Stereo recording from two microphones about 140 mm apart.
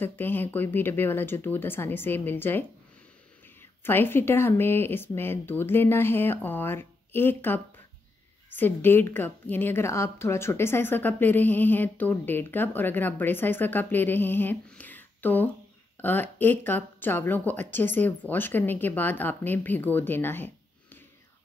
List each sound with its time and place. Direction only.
0.0 s a woman's voice: 15° left (ahead or behind)
3.8 s a woman's voice: 15° left (ahead or behind)